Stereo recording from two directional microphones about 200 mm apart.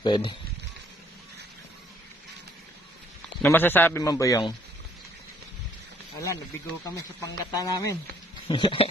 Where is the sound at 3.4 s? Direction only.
10° left (ahead or behind).